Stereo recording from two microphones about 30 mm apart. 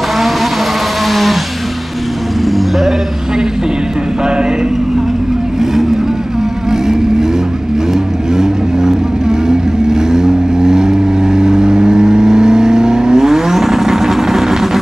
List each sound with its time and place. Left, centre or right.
2.4 s sheep: centre
6.7 s vehicle: centre
8.4 s vehicle: centre